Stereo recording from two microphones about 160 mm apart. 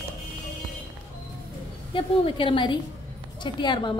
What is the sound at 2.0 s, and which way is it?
A woman's voice, 35° left (ahead or behind).